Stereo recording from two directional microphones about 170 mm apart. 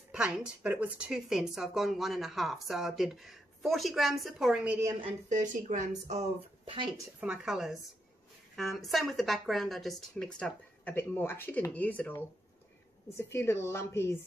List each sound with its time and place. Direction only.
0.1 s a woman's voice: 5° right (ahead or behind)
5.3 s speech: 45° right (ahead or behind)
7.2 s a woman's voice: 5° right (ahead or behind); by 14.1 s 15° left (ahead or behind)